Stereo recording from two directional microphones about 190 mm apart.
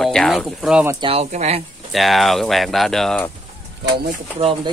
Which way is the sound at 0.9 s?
30° right (ahead or behind).